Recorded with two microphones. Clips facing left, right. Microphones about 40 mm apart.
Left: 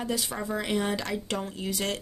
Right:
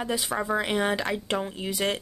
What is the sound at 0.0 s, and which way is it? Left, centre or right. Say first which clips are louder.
Speech: right 3 dB; right.